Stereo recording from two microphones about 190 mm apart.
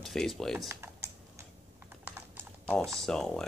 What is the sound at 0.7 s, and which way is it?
Typing, 15° right (ahead or behind).